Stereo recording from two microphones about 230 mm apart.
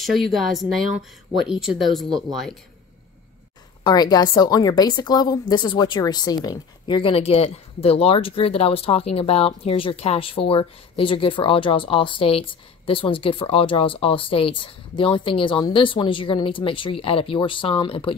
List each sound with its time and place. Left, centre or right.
0.0 s a woman's voice: centre
3.8 s a woman's voice: centre